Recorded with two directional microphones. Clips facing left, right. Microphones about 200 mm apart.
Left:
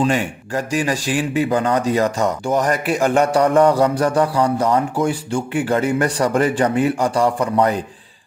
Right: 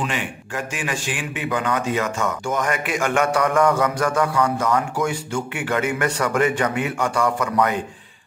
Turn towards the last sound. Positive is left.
turn(degrees=35)  # may be behind; listen again after turning